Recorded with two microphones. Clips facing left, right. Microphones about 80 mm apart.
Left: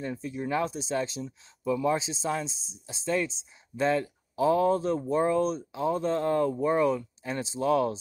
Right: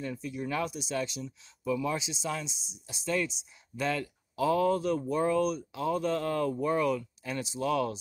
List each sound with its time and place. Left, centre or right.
0.0 s speech: left